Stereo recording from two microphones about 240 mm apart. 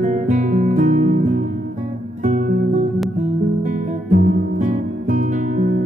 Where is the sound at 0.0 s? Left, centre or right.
Right.